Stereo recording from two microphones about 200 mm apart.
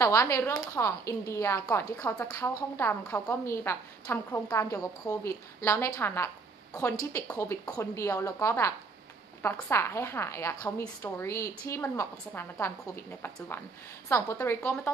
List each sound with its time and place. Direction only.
0.0 s a woman's voice: 15° left (ahead or behind)